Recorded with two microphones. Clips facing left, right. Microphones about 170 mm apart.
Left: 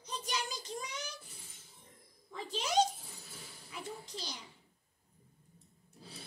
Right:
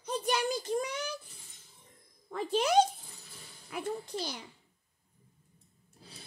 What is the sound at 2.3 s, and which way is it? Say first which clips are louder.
A child's voice: right 7 dB; 55° right (ahead or behind).